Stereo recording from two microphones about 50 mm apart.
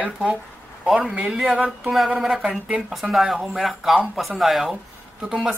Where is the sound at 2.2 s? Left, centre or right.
Centre.